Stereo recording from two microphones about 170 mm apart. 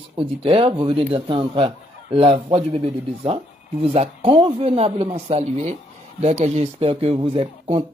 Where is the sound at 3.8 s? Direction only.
35° right (ahead or behind).